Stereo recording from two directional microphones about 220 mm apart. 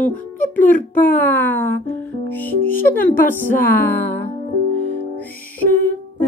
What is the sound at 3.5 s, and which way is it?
Speech, 40° left (ahead or behind).